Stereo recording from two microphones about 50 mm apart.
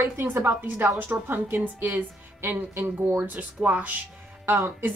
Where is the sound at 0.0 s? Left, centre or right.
Right.